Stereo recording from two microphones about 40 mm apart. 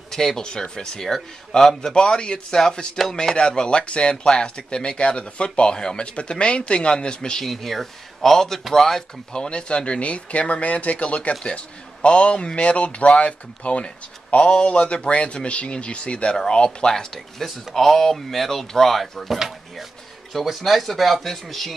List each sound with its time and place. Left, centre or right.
0.1 s a man's voice: centre
3.0 s speech: centre
3.3 s a man's voice: left
7.4 s speech: centre
9.3 s a man's voice: left; by 21.7 s centre